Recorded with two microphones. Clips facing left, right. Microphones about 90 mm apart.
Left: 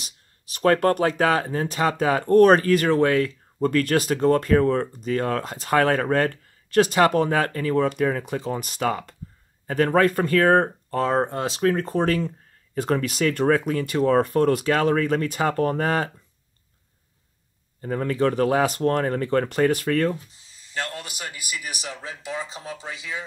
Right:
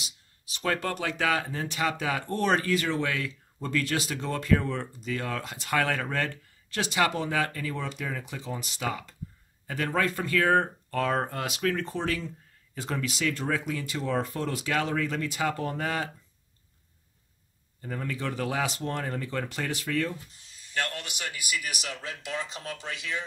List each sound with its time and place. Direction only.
0.0 s speech: 50° left (ahead or behind)
17.8 s speech: 45° left (ahead or behind)
20.7 s a man's voice: 25° left (ahead or behind); by 23.2 s 10° left (ahead or behind)